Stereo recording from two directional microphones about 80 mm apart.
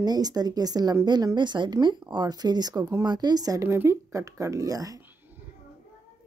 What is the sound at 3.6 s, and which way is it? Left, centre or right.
Speech, right.